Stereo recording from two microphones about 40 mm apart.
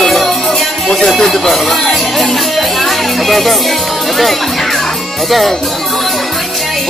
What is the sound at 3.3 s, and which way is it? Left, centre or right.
Music, centre.